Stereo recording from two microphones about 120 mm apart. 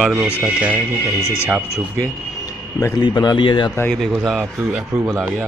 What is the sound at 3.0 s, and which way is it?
Speech, 35° left (ahead or behind).